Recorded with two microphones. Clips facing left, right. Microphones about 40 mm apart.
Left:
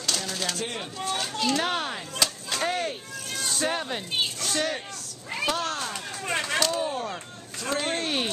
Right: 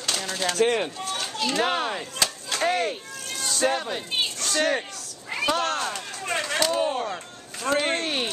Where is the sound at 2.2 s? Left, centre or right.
Centre.